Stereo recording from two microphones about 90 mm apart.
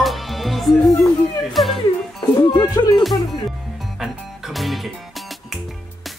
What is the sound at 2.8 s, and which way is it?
Speech, 55° left (ahead or behind).